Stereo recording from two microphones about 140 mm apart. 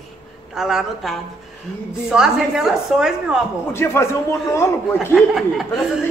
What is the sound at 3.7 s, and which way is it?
A man's voice, 20° left (ahead or behind).